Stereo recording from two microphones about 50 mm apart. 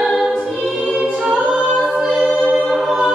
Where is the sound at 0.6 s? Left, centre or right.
Centre.